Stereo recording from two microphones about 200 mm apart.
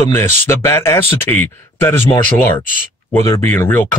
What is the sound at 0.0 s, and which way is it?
Speech, 10° left (ahead or behind).